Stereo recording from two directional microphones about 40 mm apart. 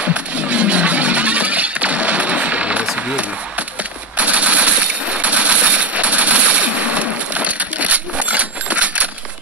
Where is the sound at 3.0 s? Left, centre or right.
Right.